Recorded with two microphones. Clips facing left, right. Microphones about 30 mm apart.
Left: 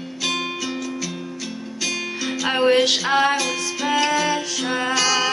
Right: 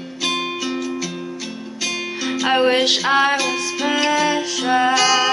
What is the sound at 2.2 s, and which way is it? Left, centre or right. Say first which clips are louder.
Music: right 2 dB; centre.